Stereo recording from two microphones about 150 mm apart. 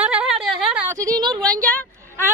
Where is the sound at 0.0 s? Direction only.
5° right (ahead or behind).